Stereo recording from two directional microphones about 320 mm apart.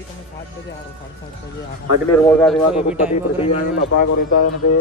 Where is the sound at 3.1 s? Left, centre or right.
Centre.